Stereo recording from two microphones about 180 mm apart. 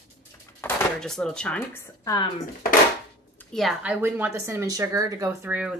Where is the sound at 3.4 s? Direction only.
Centre (ahead or behind).